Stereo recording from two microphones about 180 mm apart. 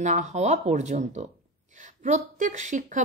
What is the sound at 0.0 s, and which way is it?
A man's voice, 40° right (ahead or behind).